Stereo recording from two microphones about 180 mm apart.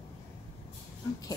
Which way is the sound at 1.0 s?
15° left (ahead or behind).